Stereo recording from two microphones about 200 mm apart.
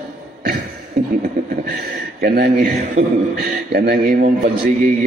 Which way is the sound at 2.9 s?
45° right (ahead or behind).